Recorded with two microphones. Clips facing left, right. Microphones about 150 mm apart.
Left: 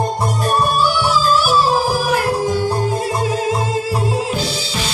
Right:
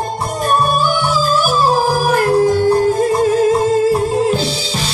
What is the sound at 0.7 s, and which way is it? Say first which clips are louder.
Yodeling: right 1 dB; 50° right (ahead or behind).